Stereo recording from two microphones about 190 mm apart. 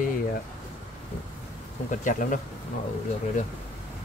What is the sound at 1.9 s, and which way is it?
Speech, 45° left (ahead or behind).